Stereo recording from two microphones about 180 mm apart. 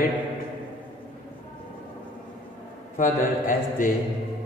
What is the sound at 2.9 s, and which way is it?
Speech, 45° left (ahead or behind).